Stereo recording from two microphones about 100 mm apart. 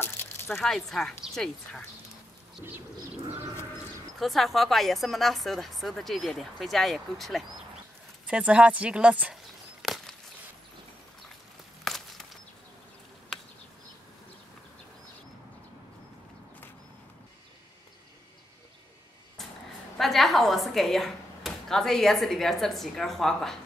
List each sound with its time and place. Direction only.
0.0 s squish: 20° left (ahead or behind)
0.5 s a woman's voice: 5° left (ahead or behind)
4.2 s a woman's voice: centre (ahead or behind)
8.3 s speech: 10° right (ahead or behind)
9.8 s a sound: centre (ahead or behind)
11.8 s a sound: centre (ahead or behind)
20.0 s speech: centre (ahead or behind)